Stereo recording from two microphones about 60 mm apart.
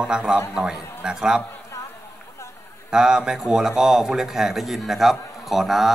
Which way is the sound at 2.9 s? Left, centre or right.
Centre.